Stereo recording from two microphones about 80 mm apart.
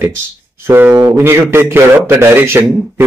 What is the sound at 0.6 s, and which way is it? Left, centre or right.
Speech, right.